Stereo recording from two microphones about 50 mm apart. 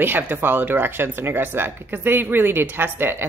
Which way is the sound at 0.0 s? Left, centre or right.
Right.